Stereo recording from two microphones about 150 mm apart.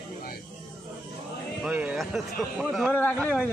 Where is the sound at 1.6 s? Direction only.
10° right (ahead or behind).